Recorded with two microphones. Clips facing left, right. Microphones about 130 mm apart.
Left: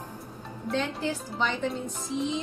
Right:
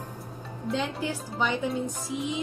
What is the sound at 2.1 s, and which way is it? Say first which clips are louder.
Music: left 4 dB; 5° right (ahead or behind).